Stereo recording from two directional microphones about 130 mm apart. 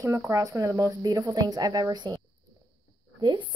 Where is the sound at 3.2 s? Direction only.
35° right (ahead or behind).